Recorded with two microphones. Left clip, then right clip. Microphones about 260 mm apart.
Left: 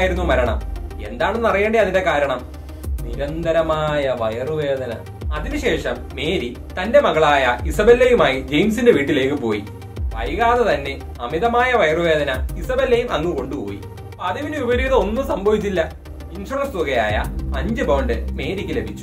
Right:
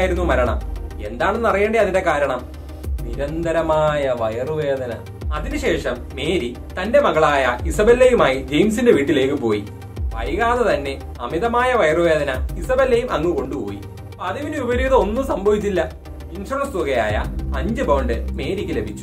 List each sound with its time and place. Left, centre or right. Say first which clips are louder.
0.0 s a man's voice: even; centre